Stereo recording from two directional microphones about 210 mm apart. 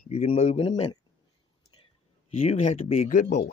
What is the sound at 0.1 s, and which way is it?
Speech, 30° left (ahead or behind).